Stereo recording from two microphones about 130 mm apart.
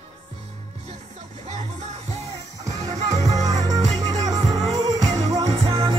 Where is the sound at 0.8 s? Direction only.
60° right (ahead or behind).